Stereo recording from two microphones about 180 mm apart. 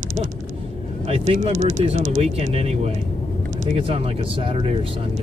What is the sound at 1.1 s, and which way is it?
Speech, 35° right (ahead or behind).